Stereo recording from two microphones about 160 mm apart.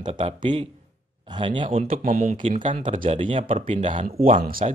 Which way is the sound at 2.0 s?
55° right (ahead or behind).